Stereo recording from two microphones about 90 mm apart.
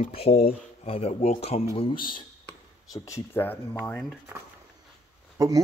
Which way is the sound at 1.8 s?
70° left (ahead or behind).